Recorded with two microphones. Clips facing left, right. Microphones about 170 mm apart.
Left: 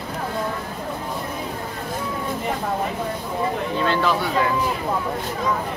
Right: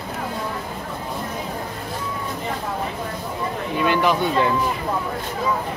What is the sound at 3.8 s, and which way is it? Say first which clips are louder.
Speech: right 3 dB; 15° right (ahead or behind).